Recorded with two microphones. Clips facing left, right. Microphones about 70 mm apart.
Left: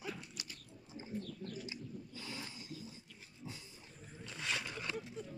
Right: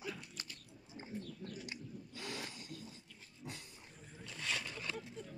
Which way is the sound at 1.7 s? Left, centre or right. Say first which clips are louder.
Left 1 dB; right.